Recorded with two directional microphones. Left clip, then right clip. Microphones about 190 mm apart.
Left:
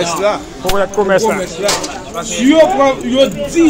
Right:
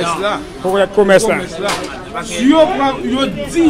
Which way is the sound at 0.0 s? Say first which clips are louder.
Left 2 dB; 25° right (ahead or behind).